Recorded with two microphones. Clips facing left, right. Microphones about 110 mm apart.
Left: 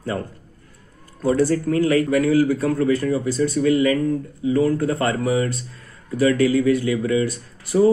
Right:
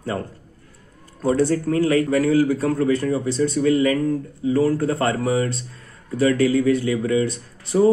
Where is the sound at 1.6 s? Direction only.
30° right (ahead or behind).